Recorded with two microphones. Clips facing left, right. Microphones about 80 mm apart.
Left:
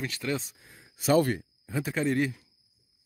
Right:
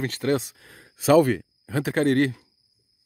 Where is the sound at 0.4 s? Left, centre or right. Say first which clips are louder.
Right 6 dB; right.